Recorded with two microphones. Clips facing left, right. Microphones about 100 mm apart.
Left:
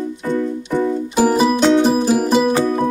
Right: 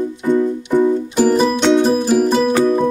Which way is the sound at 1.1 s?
5° left (ahead or behind).